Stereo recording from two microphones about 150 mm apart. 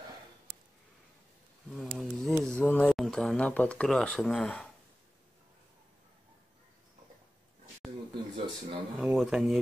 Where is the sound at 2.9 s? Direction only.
5° left (ahead or behind).